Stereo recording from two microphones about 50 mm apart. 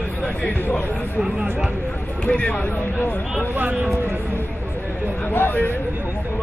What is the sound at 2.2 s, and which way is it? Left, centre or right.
Speech, left.